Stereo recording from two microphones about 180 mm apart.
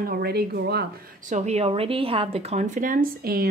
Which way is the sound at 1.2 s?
40° right (ahead or behind).